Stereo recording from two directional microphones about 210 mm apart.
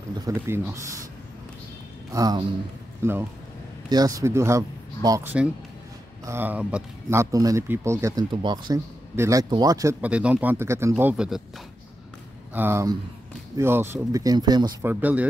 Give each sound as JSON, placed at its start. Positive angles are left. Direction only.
{"t": 0.2, "sound": "speech", "side_deg": -15}
{"t": 2.1, "sound": "speech", "side_deg": -20}
{"t": 12.5, "sound": "speech", "side_deg": -10}